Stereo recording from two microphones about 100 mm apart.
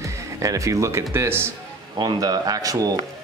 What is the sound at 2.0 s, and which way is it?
Speech, 40° right (ahead or behind).